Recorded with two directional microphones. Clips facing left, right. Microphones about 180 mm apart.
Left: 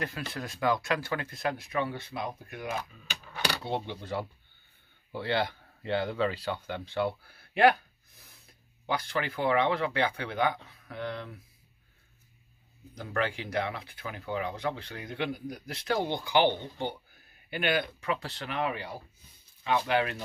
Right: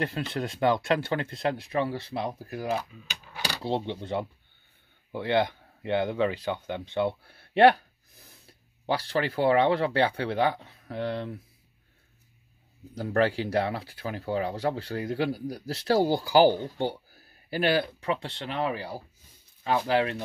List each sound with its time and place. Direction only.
0.0 s speech: 25° right (ahead or behind)
12.9 s speech: 35° right (ahead or behind)